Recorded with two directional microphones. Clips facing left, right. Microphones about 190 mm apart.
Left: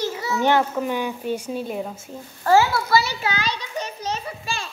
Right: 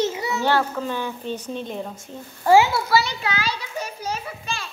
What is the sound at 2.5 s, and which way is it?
Speech, 15° right (ahead or behind).